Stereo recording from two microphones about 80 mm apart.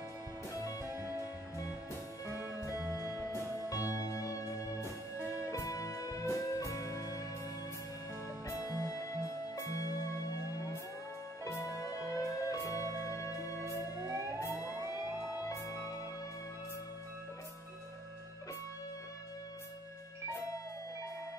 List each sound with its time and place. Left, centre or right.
2.2 s music: right
2.9 s music: left
8.5 s music: left
15.5 s music: right